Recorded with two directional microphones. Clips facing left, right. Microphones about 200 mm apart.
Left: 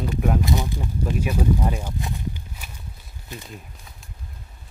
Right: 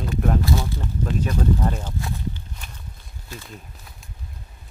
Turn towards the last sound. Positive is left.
turn(degrees=0)  # may be behind; listen again after turning